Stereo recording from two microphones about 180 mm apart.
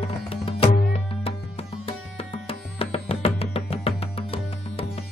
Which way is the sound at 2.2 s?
35° left (ahead or behind).